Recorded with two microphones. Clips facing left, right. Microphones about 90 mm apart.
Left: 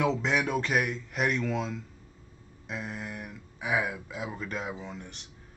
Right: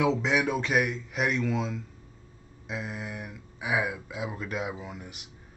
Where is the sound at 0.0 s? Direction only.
Centre (ahead or behind).